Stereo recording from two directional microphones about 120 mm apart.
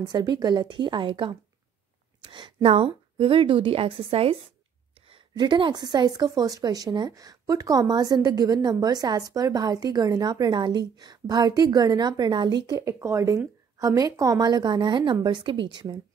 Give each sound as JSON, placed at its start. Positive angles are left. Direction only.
{"t": 0.0, "sound": "a woman's voice", "side_deg": -35}
{"t": 2.6, "sound": "a woman's voice", "side_deg": -50}
{"t": 5.0, "sound": "a woman's voice", "side_deg": -45}